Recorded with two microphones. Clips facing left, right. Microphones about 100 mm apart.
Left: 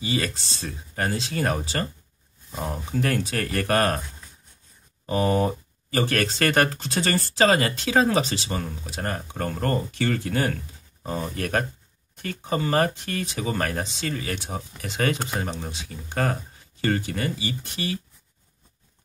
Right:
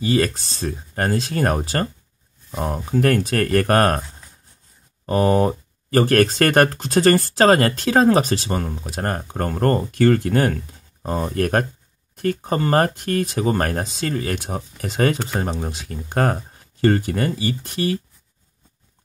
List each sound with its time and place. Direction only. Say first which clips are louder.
0.0 s speech: right 8 dB; 50° right (ahead or behind)
5.0 s speech: right 5 dB; 45° right (ahead or behind)